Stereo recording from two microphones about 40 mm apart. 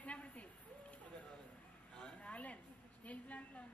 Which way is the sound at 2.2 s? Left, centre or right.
Left.